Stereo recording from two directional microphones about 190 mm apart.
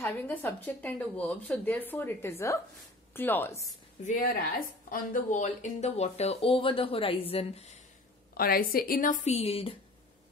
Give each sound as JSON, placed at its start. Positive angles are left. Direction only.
{"t": 0.0, "sound": "a woman's voice", "side_deg": 10}
{"t": 4.0, "sound": "speech", "side_deg": 45}
{"t": 8.4, "sound": "a woman's voice", "side_deg": 50}